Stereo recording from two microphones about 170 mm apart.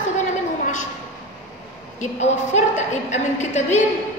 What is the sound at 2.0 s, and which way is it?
A woman's voice, 40° left (ahead or behind).